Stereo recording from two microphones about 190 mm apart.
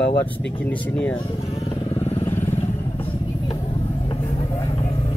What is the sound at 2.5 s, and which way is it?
Vehicle, 30° left (ahead or behind).